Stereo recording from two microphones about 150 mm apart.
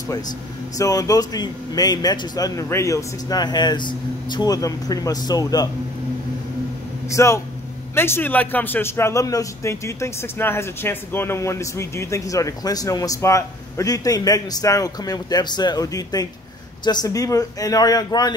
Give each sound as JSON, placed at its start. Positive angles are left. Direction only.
{"t": 0.7, "sound": "a man's voice", "side_deg": 20}
{"t": 7.1, "sound": "a man's voice", "side_deg": 20}